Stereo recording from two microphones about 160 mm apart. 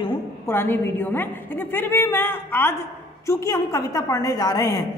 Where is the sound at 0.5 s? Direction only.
15° left (ahead or behind).